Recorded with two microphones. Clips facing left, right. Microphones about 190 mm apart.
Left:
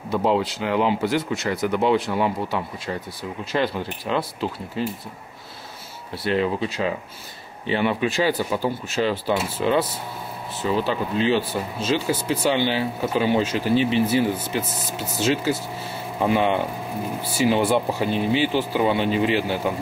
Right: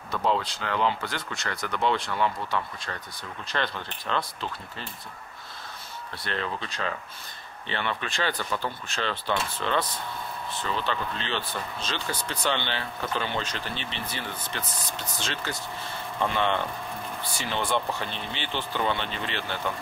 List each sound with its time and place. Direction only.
0.2 s speech: 5° left (ahead or behind)
3.5 s speech: 10° left (ahead or behind)
6.2 s speech: 10° left (ahead or behind)